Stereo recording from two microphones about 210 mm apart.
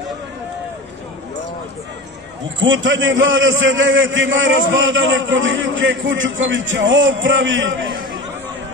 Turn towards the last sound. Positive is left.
turn(degrees=-60)  # may be behind; listen again after turning